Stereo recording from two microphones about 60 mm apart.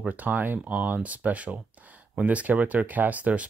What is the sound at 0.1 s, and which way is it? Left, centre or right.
Speech, right.